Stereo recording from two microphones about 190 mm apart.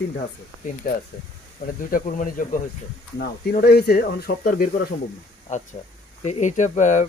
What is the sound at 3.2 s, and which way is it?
Speech, 55° left (ahead or behind).